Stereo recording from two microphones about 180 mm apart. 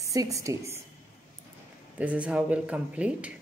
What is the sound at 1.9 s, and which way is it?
Speech, 5° right (ahead or behind).